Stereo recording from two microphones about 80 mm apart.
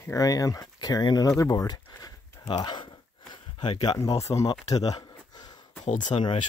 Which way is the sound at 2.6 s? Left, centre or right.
Left.